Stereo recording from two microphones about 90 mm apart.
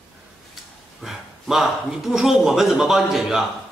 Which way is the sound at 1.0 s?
5° right (ahead or behind).